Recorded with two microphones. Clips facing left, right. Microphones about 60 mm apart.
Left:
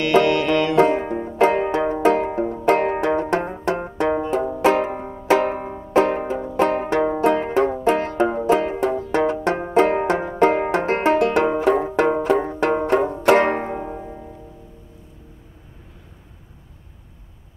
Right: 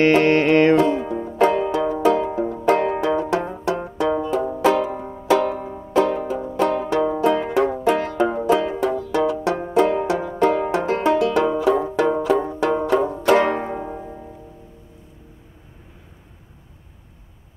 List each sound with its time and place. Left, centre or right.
0.0 s music: right
0.7 s banjo: left
1.4 s music: left
2.6 s banjo: left
5.0 s banjo: left
5.3 s banjo: left
6.5 s music: left
7.2 s banjo: left
8.5 s music: left
9.8 s banjo: left
13.7 s music: centre